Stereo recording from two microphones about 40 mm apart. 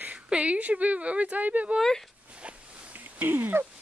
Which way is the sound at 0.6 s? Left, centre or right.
Right.